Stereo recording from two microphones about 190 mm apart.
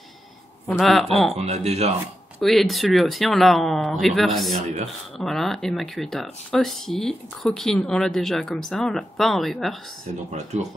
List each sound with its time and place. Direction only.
0.7 s speech: centre (ahead or behind)
1.4 s speech: 35° right (ahead or behind)
2.4 s speech: centre (ahead or behind)